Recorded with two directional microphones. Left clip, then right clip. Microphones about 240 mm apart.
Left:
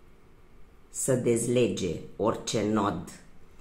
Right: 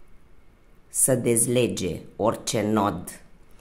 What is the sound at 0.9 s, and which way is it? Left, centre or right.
Speech, right.